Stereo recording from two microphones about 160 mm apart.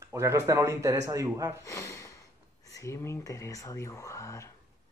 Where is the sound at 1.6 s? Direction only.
20° left (ahead or behind).